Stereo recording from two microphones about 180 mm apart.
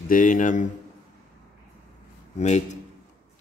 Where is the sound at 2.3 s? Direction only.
40° left (ahead or behind).